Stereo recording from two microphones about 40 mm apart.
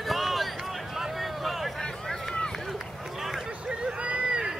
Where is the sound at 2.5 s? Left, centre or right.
Centre.